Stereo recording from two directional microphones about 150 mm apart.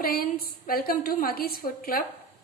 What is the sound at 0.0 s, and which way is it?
A woman's voice, 80° left.